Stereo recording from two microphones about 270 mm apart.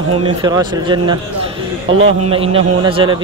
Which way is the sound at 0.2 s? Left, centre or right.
Centre.